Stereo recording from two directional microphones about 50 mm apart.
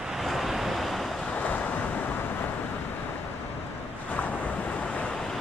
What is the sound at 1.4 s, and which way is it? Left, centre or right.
Waves, left.